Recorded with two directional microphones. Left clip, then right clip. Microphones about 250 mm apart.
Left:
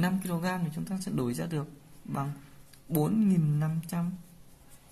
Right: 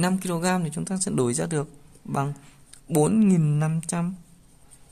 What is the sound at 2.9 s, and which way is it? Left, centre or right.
Speech, right.